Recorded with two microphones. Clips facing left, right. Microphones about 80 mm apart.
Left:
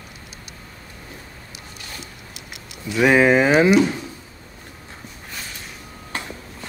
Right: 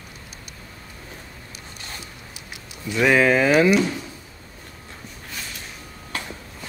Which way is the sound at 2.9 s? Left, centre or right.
Centre.